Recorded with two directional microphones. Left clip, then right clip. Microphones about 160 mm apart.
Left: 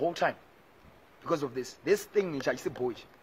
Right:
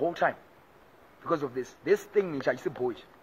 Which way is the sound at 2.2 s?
Centre (ahead or behind).